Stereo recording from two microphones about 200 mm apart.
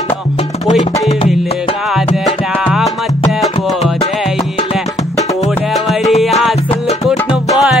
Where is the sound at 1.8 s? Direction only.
Centre (ahead or behind).